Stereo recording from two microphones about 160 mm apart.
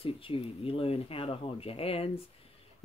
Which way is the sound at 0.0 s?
35° left (ahead or behind).